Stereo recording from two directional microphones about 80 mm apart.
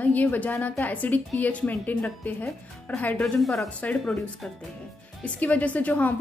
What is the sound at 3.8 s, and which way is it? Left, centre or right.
Speech, centre.